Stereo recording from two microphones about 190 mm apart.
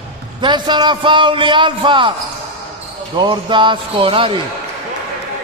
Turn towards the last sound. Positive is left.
turn(degrees=-30)  # may be behind; listen again after turning